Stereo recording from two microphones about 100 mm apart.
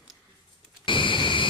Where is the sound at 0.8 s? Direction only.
55° left (ahead or behind).